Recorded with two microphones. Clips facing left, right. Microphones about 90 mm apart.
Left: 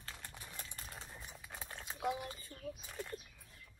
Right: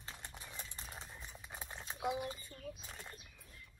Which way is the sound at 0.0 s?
20° right (ahead or behind).